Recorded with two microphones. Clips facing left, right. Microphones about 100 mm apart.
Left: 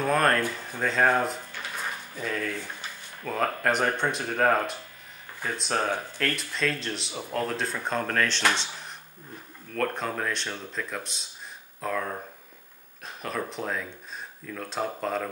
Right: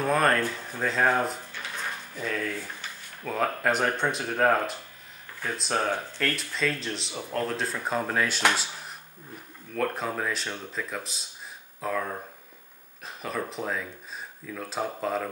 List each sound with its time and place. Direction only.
0.0 s speech: centre (ahead or behind)
9.8 s speech: 5° right (ahead or behind)